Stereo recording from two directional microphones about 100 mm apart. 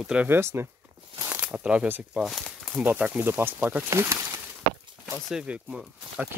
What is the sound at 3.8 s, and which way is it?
Speech, 30° right (ahead or behind).